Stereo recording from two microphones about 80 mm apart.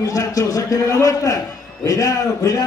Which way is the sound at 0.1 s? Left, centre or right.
Left.